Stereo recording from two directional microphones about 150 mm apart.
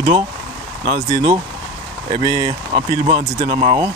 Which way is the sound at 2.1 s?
30° right (ahead or behind).